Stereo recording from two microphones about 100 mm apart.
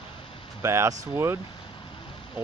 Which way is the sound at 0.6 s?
30° right (ahead or behind).